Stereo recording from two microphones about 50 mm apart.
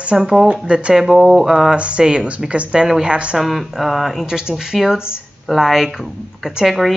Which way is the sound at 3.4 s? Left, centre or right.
Centre.